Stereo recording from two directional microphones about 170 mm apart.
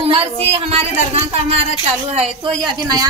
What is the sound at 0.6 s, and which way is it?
A woman's voice, 35° right (ahead or behind).